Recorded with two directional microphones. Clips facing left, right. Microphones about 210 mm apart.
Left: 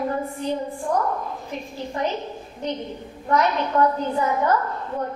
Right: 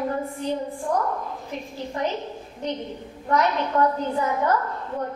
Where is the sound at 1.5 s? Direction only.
15° left (ahead or behind).